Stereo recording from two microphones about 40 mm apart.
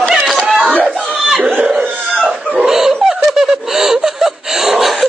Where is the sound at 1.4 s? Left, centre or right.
Right.